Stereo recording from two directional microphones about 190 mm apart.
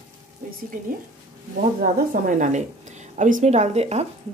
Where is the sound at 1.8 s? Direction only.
45° right (ahead or behind).